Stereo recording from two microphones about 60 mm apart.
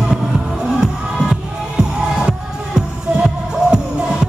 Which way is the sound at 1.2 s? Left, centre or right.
Centre.